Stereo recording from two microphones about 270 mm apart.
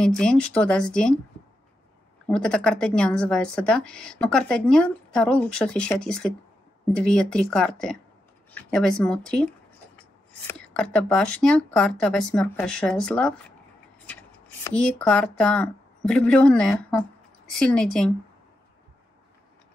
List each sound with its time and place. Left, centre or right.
0.0 s speech: centre
2.2 s speech: centre
14.6 s speech: centre